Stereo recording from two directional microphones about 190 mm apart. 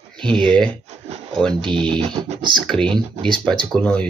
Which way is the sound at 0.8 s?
35° right (ahead or behind).